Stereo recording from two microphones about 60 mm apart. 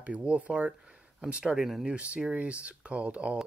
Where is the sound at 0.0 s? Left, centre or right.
Right.